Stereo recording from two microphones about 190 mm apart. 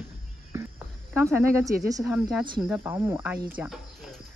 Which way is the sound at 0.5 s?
10° right (ahead or behind).